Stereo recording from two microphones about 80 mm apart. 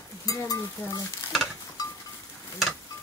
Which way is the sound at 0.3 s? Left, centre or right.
Left.